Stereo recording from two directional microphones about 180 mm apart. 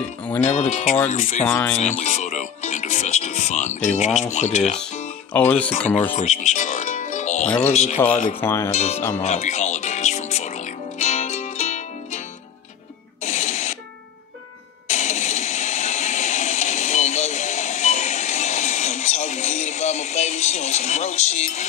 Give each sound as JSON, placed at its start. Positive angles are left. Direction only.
{"t": 0.4, "sound": "speech", "side_deg": 40}
{"t": 1.4, "sound": "speech", "side_deg": 5}
{"t": 1.8, "sound": "speech", "side_deg": 40}
{"t": 5.3, "sound": "speech", "side_deg": 10}
{"t": 6.1, "sound": "zither", "side_deg": 40}
{"t": 7.6, "sound": "speech", "side_deg": 40}
{"t": 8.4, "sound": "speech", "side_deg": 15}
{"t": 8.7, "sound": "speech", "side_deg": 35}
{"t": 9.1, "sound": "music", "side_deg": 40}
{"t": 13.2, "sound": "a sound", "side_deg": 40}
{"t": 14.9, "sound": "a sound", "side_deg": 40}